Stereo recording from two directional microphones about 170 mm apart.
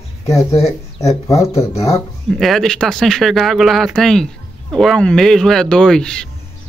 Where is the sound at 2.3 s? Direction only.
Centre (ahead or behind).